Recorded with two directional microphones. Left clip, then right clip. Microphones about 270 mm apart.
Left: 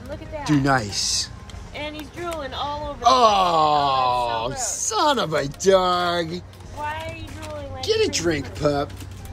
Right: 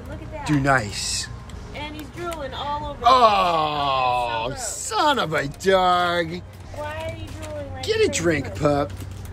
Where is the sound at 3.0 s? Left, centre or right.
Centre.